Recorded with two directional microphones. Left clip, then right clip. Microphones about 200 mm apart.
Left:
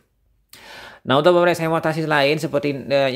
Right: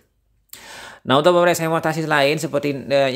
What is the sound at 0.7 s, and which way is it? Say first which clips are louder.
Speech: right 1 dB; centre (ahead or behind).